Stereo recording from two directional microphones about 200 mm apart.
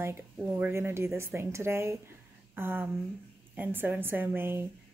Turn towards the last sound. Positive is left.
turn(degrees=-10)  # may be behind; listen again after turning